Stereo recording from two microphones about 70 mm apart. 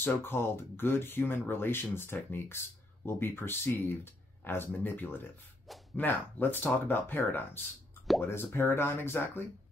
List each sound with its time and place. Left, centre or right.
0.0 s speech: left